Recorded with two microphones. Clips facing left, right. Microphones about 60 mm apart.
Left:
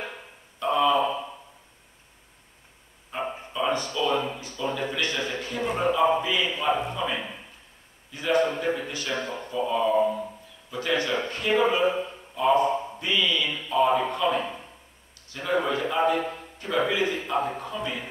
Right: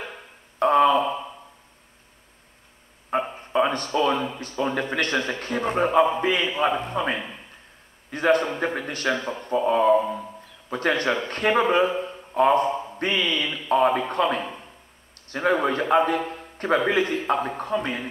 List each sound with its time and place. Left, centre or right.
0.6 s a sound: right
3.1 s bow-wow: right
4.4 s a man's voice: right